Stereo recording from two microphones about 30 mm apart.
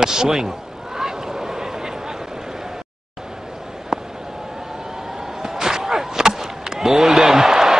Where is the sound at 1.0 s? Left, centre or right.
Centre.